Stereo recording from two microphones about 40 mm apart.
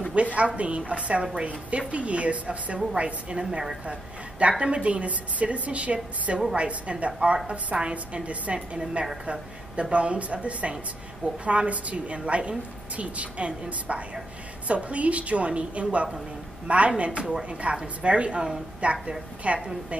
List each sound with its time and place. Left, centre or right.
0.1 s a woman's voice: right
8.5 s a woman's voice: right